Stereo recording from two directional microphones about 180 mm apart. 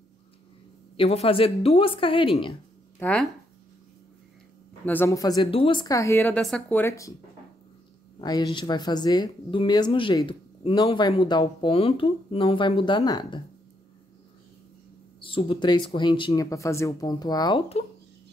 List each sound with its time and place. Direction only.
0.9 s a woman's voice: 30° left (ahead or behind)
3.0 s speech: 5° left (ahead or behind)
4.8 s speech: 10° left (ahead or behind)
8.2 s speech: 20° left (ahead or behind)
15.1 s speech: 30° left (ahead or behind)